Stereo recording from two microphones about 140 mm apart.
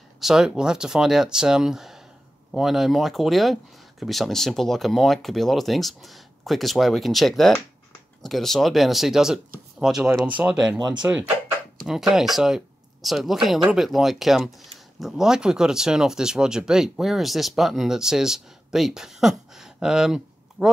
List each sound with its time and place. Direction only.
0.2 s speech: 5° right (ahead or behind)
10.7 s speech: 30° right (ahead or behind)
11.0 s speech: 10° right (ahead or behind)